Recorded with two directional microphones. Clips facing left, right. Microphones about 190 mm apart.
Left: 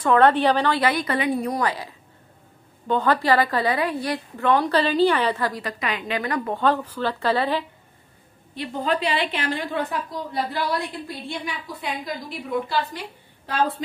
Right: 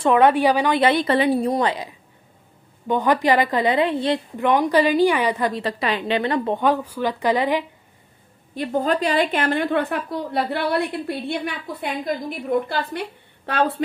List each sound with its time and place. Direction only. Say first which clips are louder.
0.2 s a woman's voice: right 1 dB; 10° right (ahead or behind); by 6.6 s 25° right (ahead or behind)
6.6 s a woman's voice: right 2 dB; 10° right (ahead or behind)
8.5 s a woman's voice: right 4 dB; 45° right (ahead or behind); by 13.8 s 65° right (ahead or behind)